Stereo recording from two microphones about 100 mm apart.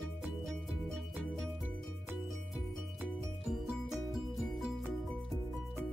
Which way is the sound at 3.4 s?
5° right (ahead or behind).